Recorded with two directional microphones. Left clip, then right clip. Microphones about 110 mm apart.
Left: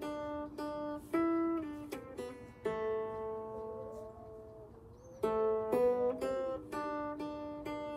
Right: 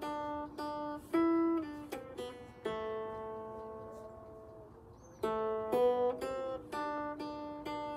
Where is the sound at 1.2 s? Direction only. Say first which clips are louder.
Right 3 dB; 35° left (ahead or behind).